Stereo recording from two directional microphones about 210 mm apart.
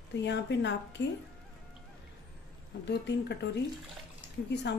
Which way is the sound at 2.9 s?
55° left (ahead or behind).